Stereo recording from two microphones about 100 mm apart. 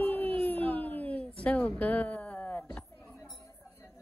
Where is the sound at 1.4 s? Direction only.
10° left (ahead or behind).